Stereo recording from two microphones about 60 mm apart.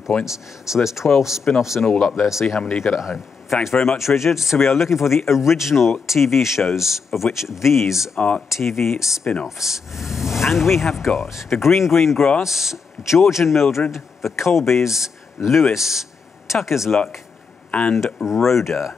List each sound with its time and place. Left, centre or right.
0.2 s speech: centre
8.2 s speech: centre
8.5 s speech: centre
15.7 s a sound: centre
16.5 s speech: centre
17.6 s speech: centre
17.9 s speech: centre